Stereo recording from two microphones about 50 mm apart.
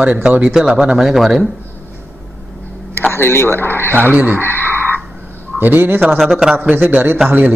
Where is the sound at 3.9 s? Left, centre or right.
Right.